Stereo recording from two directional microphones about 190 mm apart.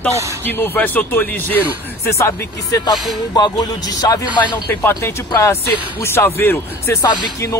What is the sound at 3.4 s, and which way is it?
A man's voice, 20° left (ahead or behind).